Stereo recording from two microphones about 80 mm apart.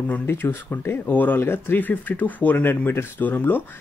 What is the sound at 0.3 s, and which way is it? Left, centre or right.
Speech, left.